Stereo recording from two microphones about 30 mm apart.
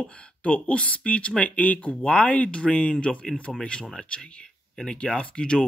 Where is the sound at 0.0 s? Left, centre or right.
Left.